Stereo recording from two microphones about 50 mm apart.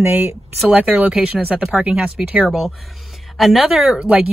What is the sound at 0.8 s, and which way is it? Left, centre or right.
Speech, right.